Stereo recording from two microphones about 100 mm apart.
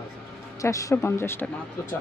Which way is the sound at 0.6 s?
30° left (ahead or behind).